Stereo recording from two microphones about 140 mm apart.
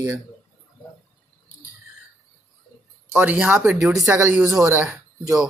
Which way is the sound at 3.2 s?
15° right (ahead or behind).